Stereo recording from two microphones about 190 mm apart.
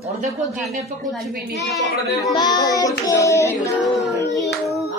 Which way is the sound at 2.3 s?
20° left (ahead or behind).